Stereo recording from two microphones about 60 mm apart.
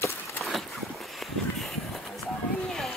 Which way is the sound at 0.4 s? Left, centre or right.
Centre.